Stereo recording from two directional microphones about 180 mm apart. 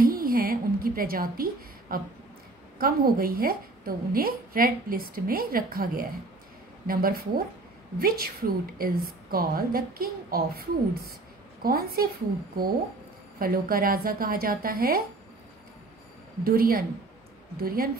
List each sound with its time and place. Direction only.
0.0 s a sound: 55° right (ahead or behind)
2.8 s a woman's voice: 55° right (ahead or behind)
16.4 s a woman's voice: 55° right (ahead or behind)